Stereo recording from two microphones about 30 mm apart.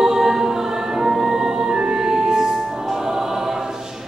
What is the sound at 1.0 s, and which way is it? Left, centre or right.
Music, centre.